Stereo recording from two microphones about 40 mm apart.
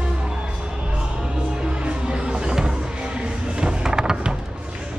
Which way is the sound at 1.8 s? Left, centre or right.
Right.